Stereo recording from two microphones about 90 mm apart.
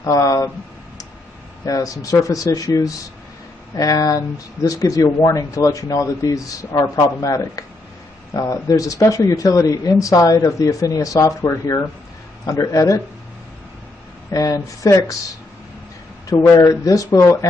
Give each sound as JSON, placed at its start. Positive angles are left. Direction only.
{"t": 0.0, "sound": "speech", "side_deg": 40}
{"t": 1.7, "sound": "speech", "side_deg": 40}
{"t": 14.3, "sound": "speech", "side_deg": 40}
{"t": 16.3, "sound": "speech", "side_deg": 40}